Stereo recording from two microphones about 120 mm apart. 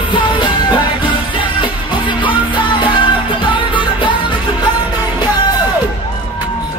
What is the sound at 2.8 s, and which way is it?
Music, 40° left (ahead or behind).